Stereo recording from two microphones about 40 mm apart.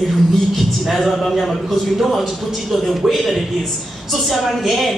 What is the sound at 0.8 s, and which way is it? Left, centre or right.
A woman's voice, centre.